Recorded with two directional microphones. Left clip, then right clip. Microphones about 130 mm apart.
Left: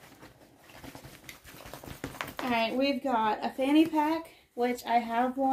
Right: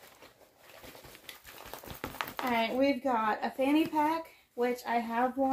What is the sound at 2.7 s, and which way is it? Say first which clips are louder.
Speech: left 1 dB; 15° left (ahead or behind).